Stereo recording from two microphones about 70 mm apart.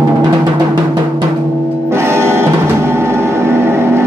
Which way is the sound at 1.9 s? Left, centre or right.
Right.